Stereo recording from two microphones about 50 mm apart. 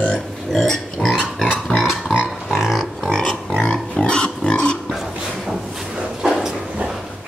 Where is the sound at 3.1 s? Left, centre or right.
Centre.